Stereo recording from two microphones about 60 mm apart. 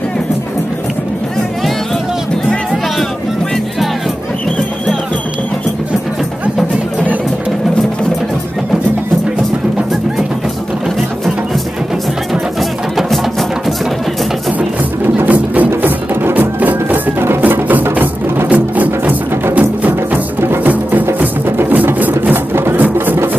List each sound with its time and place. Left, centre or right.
12.9 s music: centre
15.2 s music: right